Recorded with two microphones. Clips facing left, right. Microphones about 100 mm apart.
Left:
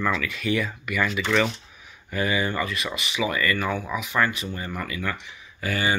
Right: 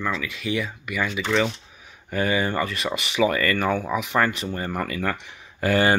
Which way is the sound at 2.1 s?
35° right (ahead or behind).